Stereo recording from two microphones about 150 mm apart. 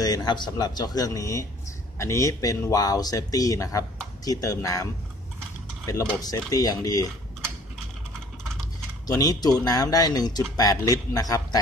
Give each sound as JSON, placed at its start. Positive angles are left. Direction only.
{"t": 0.0, "sound": "speech", "side_deg": 25}
{"t": 5.9, "sound": "speech", "side_deg": 25}
{"t": 9.0, "sound": "speech", "side_deg": 25}